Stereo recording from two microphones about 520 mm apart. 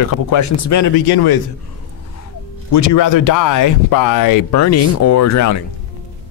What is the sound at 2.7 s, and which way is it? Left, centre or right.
Speech, left.